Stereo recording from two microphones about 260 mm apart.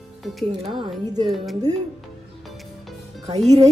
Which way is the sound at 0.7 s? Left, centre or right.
Centre.